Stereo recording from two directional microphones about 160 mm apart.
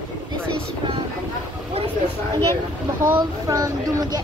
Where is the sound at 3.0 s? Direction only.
20° right (ahead or behind).